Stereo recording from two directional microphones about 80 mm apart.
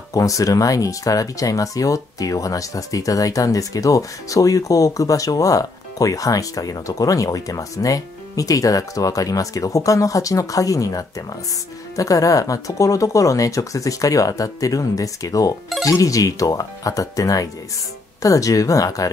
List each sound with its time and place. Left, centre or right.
0.1 s speech: left